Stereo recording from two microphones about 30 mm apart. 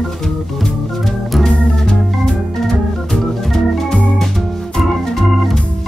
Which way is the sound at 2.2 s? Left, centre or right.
Centre.